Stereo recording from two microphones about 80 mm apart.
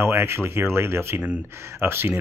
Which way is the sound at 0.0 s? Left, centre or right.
Right.